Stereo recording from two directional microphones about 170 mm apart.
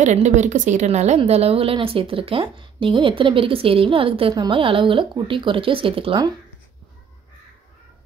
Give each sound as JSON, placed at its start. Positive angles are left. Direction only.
{"t": 0.0, "sound": "a woman's voice", "side_deg": -45}